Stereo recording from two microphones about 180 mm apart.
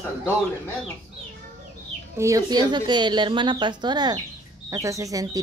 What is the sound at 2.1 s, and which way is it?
Speech, 15° right (ahead or behind).